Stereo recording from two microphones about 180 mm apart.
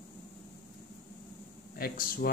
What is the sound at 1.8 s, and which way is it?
Speech, 55° left (ahead or behind).